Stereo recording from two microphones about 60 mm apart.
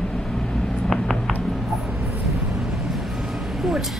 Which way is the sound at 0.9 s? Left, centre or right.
Centre.